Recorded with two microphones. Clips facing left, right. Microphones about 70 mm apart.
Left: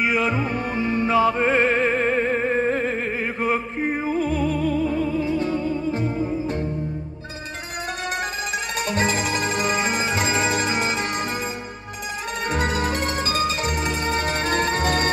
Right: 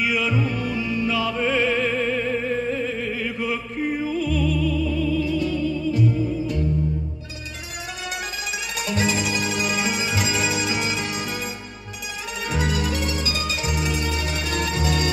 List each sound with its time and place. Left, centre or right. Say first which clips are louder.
0.0 s music: left 1 dB; left
8.7 s music: even; left
12.4 s music: left 2 dB; left